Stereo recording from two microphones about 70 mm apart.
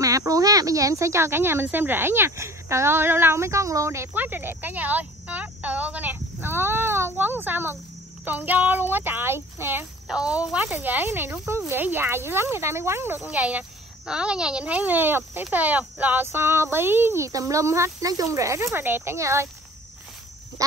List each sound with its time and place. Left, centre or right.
0.0 s speech: right
4.1 s speech: right
6.1 s speech: right
10.0 s speech: centre; by 17.3 s right
17.3 s speech: right
18.0 s speech: right
18.9 s speech: right
19.1 s speech: right